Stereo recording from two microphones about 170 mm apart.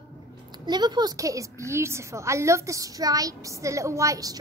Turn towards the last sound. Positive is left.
turn(degrees=-20)  # may be behind; listen again after turning